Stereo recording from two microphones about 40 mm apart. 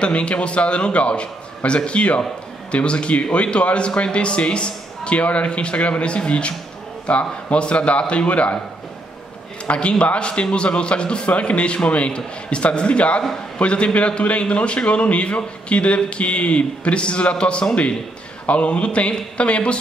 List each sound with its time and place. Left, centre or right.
0.0 s a man's voice: left
9.7 s a man's voice: left